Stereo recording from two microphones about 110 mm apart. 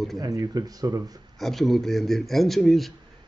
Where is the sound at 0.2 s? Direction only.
35° right (ahead or behind).